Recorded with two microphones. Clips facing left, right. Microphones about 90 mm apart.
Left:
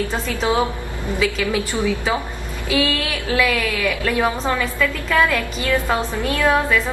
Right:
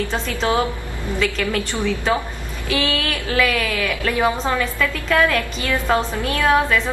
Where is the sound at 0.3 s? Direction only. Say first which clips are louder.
Left 1 dB; 15° left (ahead or behind).